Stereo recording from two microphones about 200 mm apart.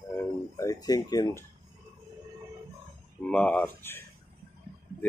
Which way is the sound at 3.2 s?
5° left (ahead or behind).